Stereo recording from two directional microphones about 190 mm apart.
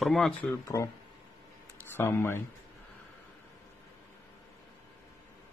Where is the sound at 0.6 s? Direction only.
15° left (ahead or behind).